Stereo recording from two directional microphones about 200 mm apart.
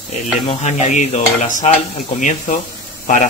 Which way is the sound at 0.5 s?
35° left (ahead or behind).